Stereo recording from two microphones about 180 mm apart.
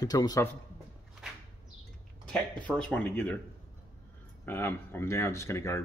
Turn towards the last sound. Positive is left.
turn(degrees=15)  # may be behind; listen again after turning